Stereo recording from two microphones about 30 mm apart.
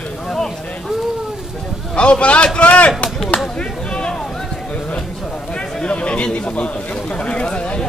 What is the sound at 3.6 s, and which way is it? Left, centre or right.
Chop, left.